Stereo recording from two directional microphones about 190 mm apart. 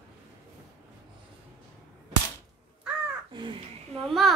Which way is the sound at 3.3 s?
25° right (ahead or behind).